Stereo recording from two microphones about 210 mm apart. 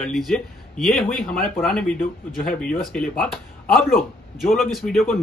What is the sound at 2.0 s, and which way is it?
Speech, 40° left (ahead or behind).